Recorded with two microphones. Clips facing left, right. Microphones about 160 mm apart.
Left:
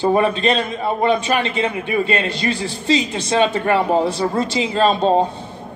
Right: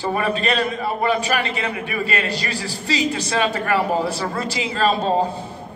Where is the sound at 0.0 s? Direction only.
30° left (ahead or behind).